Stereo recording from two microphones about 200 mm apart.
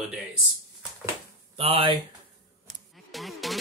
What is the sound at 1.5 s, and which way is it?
Speech, 30° right (ahead or behind).